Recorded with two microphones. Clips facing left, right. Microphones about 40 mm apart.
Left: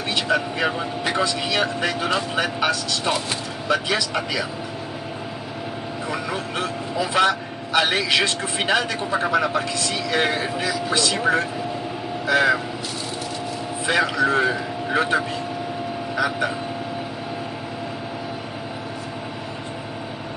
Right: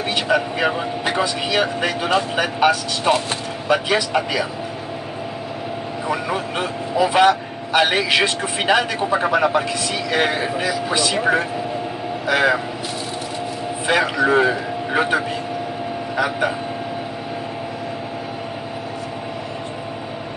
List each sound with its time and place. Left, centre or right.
0.1 s speech: centre
6.0 s speech: centre
13.8 s speech: centre